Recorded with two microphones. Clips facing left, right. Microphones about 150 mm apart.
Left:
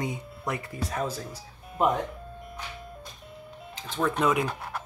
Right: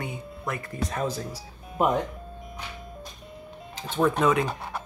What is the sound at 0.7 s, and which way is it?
Speech, 5° left (ahead or behind).